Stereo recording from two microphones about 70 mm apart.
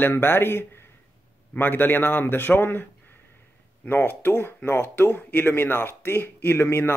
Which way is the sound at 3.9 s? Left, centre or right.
Left.